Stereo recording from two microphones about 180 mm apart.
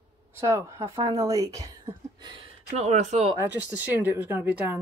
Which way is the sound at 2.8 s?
40° right (ahead or behind).